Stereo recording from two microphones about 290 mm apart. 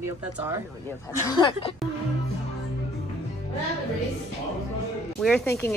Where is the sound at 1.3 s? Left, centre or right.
Centre.